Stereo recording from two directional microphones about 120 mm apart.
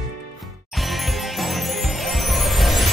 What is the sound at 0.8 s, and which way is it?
Music, centre (ahead or behind).